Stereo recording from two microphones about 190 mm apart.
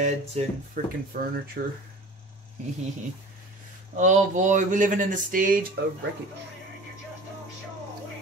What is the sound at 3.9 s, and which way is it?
Speech, 40° right (ahead or behind).